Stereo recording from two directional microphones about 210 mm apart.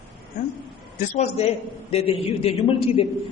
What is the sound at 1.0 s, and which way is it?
A man's voice, 35° left (ahead or behind).